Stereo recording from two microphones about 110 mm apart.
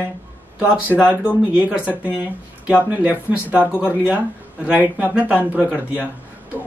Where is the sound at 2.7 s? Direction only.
15° right (ahead or behind).